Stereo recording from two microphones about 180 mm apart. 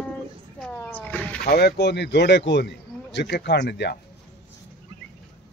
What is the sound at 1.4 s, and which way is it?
Speech, 60° left (ahead or behind).